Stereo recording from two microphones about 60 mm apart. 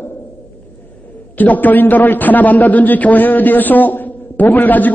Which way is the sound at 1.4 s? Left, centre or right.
Left.